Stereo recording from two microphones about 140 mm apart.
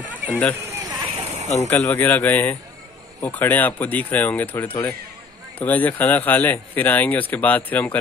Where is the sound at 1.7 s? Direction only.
15° left (ahead or behind).